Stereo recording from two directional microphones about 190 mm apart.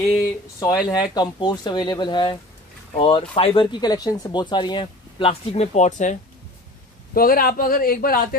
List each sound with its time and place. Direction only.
0.6 s speech: 20° left (ahead or behind); by 6.1 s 40° left (ahead or behind)
7.2 s speech: 50° left (ahead or behind)